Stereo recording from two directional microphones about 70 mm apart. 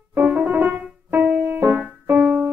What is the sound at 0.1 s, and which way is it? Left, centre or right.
Music, right.